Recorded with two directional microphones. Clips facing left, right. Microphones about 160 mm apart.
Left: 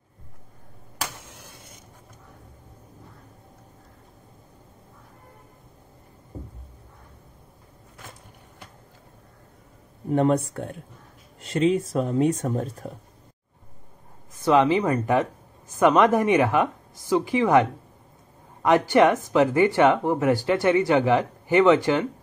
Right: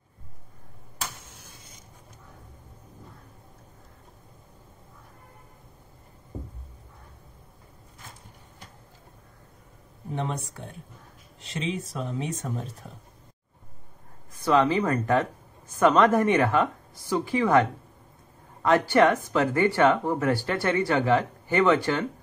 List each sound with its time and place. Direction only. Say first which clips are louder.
0.9 s tick-tock: left 4 dB; 75° left (ahead or behind)
10.1 s speech: left 11 dB; 50° left (ahead or behind)
14.4 s speech: left 3 dB; 15° left (ahead or behind)